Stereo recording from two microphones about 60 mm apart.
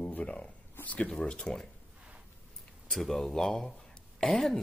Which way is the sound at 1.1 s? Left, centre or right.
Centre.